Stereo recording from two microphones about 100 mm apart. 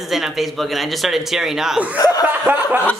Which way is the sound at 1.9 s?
40° left (ahead or behind).